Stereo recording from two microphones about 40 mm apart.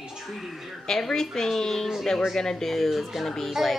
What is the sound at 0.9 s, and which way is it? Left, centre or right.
Speech, centre.